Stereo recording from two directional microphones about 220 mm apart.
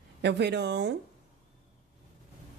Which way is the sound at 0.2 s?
50° right (ahead or behind).